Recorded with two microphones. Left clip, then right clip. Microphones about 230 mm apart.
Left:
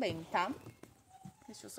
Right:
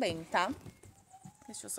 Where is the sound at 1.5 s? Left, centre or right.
Centre.